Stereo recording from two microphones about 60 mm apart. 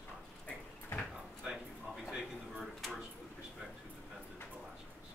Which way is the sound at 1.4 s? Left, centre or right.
Centre.